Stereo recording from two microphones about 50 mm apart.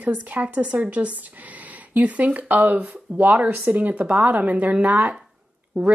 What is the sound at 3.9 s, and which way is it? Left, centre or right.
A woman's voice, right.